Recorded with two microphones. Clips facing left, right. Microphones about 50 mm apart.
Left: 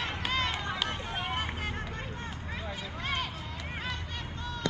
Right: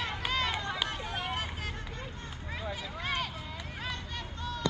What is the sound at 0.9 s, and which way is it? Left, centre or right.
Vehicle, centre.